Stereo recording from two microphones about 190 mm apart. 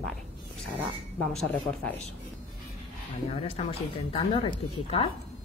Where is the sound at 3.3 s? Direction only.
30° left (ahead or behind).